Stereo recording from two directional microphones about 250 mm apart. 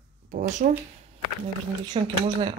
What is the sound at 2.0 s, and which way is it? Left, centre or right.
Speech, right.